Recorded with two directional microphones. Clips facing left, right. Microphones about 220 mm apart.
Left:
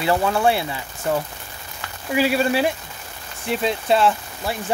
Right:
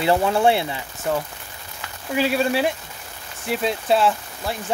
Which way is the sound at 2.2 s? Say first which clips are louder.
Left 1 dB; 5° left (ahead or behind).